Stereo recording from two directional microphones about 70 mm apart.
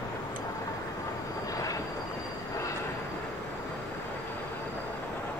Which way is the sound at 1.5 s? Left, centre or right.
Left.